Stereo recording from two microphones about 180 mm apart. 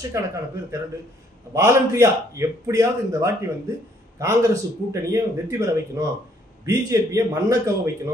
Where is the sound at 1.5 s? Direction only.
15° right (ahead or behind).